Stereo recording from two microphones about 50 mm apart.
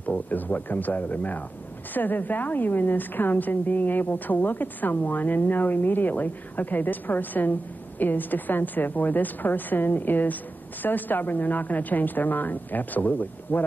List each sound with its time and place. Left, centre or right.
0.0 s a woman's voice: left